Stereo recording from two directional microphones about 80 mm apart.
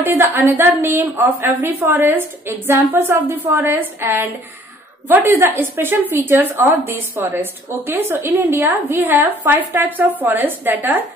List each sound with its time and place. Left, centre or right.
0.1 s a woman's voice: right